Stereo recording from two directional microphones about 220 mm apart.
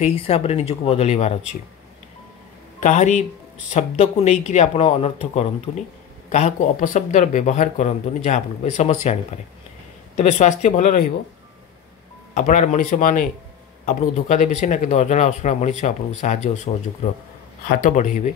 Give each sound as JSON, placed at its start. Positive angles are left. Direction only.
{"t": 0.0, "sound": "speech", "side_deg": 25}
{"t": 2.8, "sound": "speech", "side_deg": 35}
{"t": 12.4, "sound": "speech", "side_deg": 35}